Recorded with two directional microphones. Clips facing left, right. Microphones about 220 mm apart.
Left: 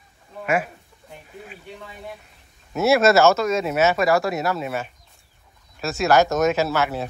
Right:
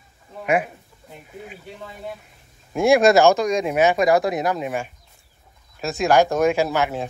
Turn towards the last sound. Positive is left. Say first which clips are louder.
# right 1 dB
turn(degrees=-15)  # may be behind; listen again after turning